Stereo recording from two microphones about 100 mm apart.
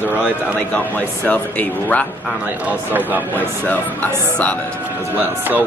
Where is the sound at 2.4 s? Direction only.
20° right (ahead or behind).